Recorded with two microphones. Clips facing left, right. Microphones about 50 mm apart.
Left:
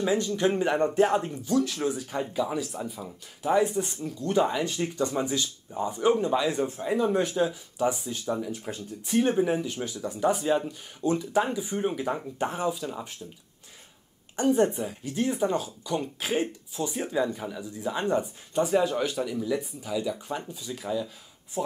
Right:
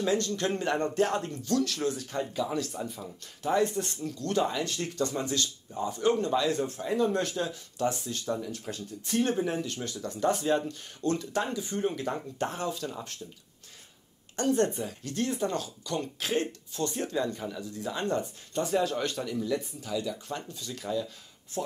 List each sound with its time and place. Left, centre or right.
0.0 s speech: centre
14.3 s speech: centre